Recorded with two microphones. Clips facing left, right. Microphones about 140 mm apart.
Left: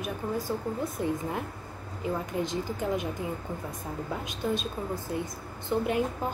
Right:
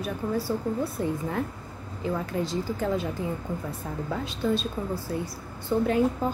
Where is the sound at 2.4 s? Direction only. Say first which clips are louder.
Right 2 dB; 20° left (ahead or behind).